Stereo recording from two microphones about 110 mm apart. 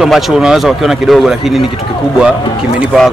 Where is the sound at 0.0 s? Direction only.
5° right (ahead or behind).